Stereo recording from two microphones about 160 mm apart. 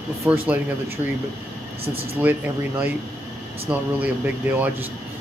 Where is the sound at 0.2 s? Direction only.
10° right (ahead or behind).